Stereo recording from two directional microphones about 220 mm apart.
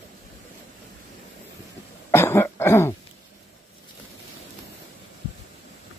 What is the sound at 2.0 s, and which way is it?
Cough, 10° left (ahead or behind).